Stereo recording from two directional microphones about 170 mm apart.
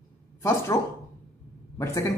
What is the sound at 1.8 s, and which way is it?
Speech, 15° left (ahead or behind).